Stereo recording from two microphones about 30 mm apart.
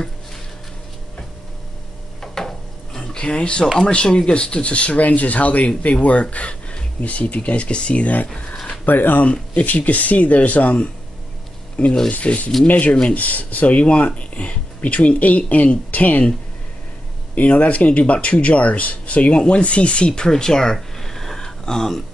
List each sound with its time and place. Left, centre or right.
2.3 s a sound: centre
3.0 s a sound: left
3.8 s speech: left
8.8 s speech: left
9.2 s speech: left
17.4 s speech: left
19.3 s speech: left
20.1 s speech: left
20.7 s a sound: centre